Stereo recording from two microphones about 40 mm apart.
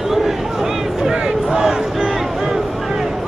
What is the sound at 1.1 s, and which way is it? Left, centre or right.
Crowd, centre.